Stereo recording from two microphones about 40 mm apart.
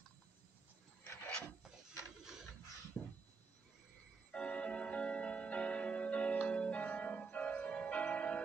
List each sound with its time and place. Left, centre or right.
1.0 s wood: left
2.9 s a sound: left
4.3 s organ: left
6.4 s music: left